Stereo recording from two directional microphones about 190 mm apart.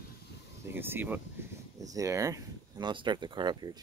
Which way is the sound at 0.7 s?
10° right (ahead or behind).